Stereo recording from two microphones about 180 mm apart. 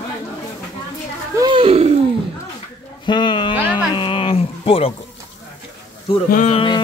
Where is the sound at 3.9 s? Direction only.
30° left (ahead or behind).